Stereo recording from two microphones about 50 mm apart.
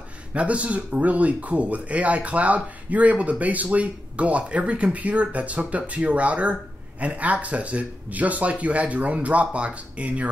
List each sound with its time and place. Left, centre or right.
0.3 s speech: right